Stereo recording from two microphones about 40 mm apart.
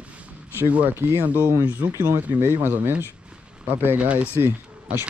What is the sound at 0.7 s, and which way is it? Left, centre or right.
Speech, right.